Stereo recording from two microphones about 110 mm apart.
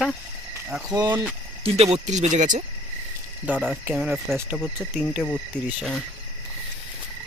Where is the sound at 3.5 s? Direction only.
15° right (ahead or behind).